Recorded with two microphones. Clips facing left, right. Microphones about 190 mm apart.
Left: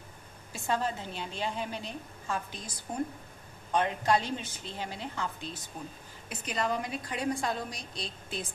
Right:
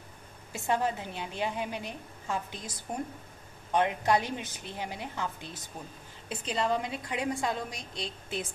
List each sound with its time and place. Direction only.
0.5 s a woman's voice: 20° right (ahead or behind)
3.7 s a woman's voice: 20° right (ahead or behind)